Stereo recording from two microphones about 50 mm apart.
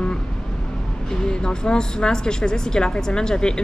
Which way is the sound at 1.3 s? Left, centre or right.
Centre.